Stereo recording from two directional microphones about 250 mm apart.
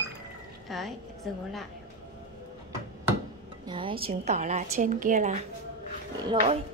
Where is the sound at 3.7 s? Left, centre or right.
Right.